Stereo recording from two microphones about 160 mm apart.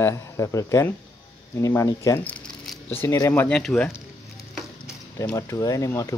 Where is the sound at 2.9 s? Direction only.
15° left (ahead or behind).